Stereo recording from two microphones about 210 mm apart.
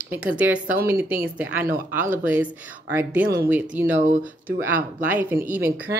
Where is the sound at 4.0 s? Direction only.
35° right (ahead or behind).